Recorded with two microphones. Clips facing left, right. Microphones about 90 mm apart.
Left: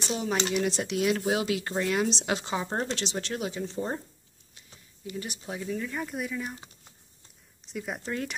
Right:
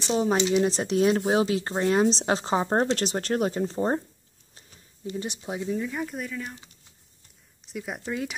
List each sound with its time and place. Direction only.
0.1 s speech: 30° right (ahead or behind)
5.0 s speech: 25° right (ahead or behind)
5.9 s speech: centre (ahead or behind)
7.6 s speech: centre (ahead or behind)